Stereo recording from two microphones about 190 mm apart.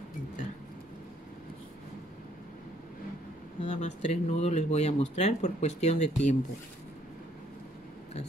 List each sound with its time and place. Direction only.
3.6 s speech: 40° left (ahead or behind)